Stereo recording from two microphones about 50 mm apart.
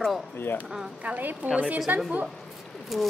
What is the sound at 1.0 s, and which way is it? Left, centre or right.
A woman's voice, right.